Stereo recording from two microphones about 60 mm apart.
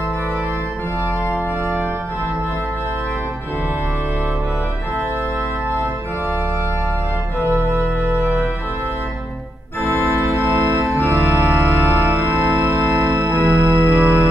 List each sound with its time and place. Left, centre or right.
11.0 s organ: left
11.4 s organ: right
13.4 s music: left
14.0 s organ: left